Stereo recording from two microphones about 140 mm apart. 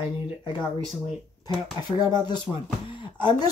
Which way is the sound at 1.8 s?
30° left (ahead or behind).